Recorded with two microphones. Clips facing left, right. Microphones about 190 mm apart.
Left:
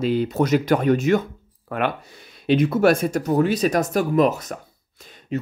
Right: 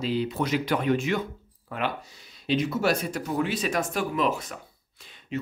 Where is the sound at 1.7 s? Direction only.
55° left (ahead or behind).